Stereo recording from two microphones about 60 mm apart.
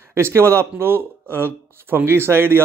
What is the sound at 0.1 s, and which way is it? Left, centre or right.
Speech, right.